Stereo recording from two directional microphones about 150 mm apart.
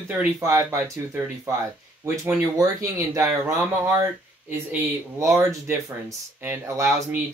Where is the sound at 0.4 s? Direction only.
20° right (ahead or behind).